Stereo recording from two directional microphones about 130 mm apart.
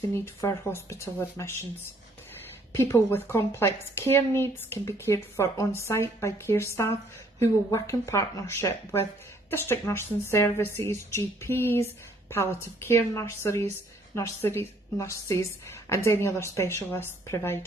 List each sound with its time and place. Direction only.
0.1 s a woman's voice: 20° left (ahead or behind)
2.7 s a woman's voice: 20° left (ahead or behind)